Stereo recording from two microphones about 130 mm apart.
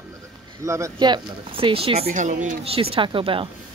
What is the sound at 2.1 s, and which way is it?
Speech, 75° right (ahead or behind).